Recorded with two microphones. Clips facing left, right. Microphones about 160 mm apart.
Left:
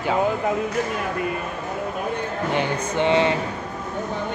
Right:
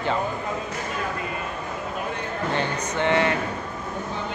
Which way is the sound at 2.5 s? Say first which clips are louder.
Left 4 dB; 20° left (ahead or behind).